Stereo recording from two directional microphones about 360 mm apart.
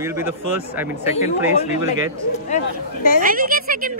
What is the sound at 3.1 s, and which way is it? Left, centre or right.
Speech, right.